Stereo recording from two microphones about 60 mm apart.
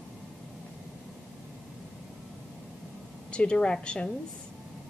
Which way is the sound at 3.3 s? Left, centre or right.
Centre.